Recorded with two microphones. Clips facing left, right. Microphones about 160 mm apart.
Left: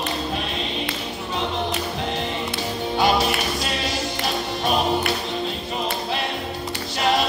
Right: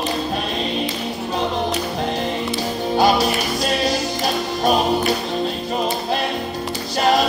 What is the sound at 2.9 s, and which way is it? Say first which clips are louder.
Music: right 3 dB; 40° right (ahead or behind).